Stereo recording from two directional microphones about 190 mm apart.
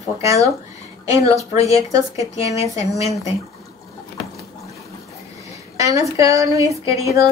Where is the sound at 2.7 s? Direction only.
15° right (ahead or behind).